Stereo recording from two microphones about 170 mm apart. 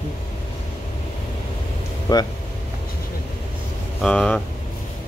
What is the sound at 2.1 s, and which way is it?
Speech, 25° left (ahead or behind).